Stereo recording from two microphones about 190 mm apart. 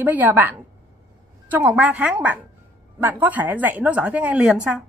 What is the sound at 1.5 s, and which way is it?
A woman's voice, 5° right (ahead or behind).